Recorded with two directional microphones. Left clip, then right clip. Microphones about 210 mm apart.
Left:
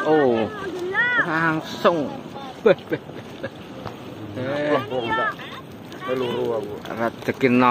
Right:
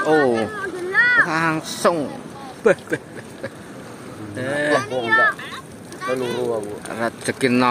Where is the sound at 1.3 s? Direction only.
10° right (ahead or behind).